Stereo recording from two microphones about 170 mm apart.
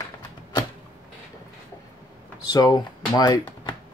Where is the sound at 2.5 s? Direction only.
25° left (ahead or behind).